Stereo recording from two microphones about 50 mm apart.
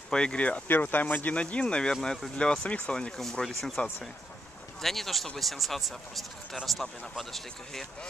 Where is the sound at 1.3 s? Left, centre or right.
Left.